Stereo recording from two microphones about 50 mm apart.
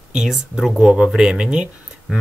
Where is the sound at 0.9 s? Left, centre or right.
Centre.